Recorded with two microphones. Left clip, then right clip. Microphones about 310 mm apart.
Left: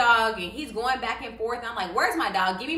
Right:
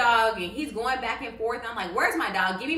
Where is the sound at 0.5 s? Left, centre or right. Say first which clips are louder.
Left 1 dB; centre.